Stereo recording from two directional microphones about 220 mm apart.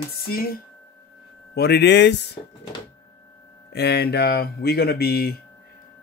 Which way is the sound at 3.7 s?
50° left (ahead or behind).